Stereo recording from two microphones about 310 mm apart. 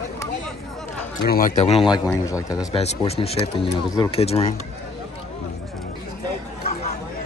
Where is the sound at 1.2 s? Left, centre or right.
Left.